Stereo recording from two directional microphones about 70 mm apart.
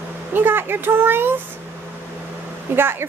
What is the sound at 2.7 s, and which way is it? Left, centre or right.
Speech, right.